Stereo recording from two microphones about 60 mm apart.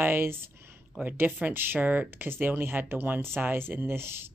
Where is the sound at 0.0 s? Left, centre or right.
Right.